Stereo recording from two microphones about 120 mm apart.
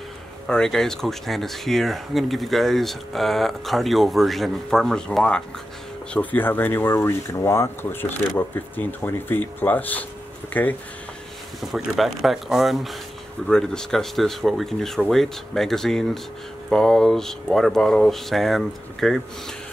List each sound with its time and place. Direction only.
0.5 s speech: 5° left (ahead or behind)
11.6 s speech: centre (ahead or behind)